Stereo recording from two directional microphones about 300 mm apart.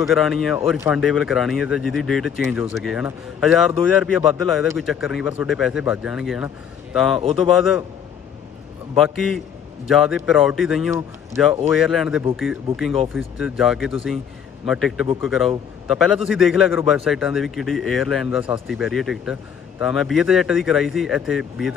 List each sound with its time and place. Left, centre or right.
0.0 s a man's voice: centre
8.9 s a man's voice: centre